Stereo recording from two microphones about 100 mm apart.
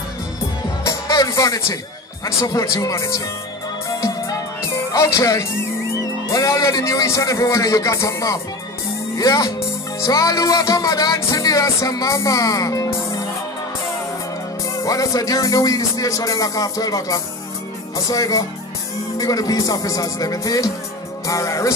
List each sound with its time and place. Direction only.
0.8 s music: 35° left (ahead or behind)
4.9 s music: 30° left (ahead or behind)
9.1 s speech: 30° left (ahead or behind)
9.9 s music: 35° left (ahead or behind)
14.8 s music: 35° left (ahead or behind)